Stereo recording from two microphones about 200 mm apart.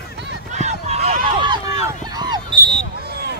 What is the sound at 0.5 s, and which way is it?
Run, 35° right (ahead or behind).